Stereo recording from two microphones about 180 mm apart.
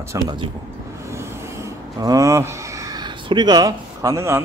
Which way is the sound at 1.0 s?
15° right (ahead or behind).